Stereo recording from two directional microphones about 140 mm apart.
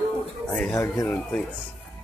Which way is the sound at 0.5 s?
15° left (ahead or behind).